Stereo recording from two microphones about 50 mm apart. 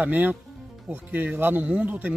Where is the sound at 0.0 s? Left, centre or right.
Right.